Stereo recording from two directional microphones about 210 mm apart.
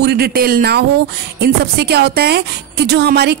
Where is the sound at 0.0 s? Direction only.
50° right (ahead or behind).